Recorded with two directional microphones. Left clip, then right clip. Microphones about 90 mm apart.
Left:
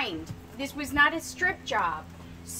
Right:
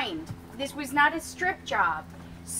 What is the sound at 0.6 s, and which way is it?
A woman's voice, 20° left (ahead or behind).